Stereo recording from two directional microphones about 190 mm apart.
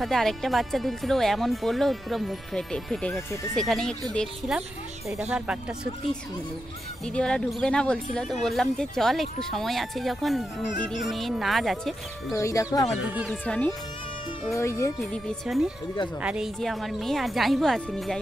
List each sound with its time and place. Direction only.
0.0 s speech: centre (ahead or behind)
7.1 s speech: 5° left (ahead or behind)
12.3 s speech: 15° left (ahead or behind)
13.0 s speech: 10° right (ahead or behind)
13.3 s speech: 5° left (ahead or behind)
15.0 s speech: centre (ahead or behind)